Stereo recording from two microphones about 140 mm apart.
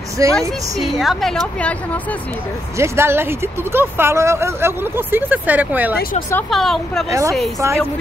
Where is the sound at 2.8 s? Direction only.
15° right (ahead or behind).